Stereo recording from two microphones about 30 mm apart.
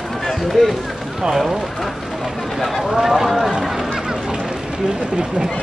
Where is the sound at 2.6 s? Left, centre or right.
Centre.